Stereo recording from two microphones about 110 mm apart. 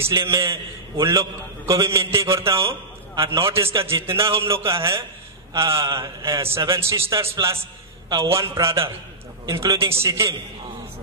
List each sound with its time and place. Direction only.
0.0 s a man's voice: 25° right (ahead or behind)